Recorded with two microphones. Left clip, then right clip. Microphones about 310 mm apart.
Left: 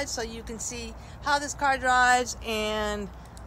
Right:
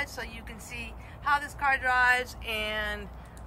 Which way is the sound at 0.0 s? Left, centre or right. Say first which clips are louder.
Left 3 dB; centre.